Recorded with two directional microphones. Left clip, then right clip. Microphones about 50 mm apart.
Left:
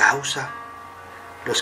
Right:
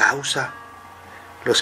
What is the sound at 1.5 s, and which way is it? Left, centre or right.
Speech, right.